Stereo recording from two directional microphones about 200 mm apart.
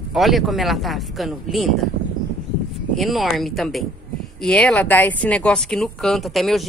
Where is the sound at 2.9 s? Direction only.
Centre (ahead or behind).